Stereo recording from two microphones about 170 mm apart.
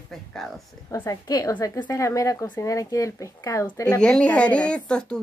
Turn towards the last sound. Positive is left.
turn(degrees=5)  # may be behind; listen again after turning